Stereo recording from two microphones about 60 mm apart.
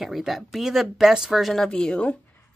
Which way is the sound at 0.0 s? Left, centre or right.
Centre.